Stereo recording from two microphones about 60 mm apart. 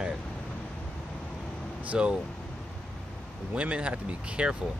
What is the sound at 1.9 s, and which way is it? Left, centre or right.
Speech, centre.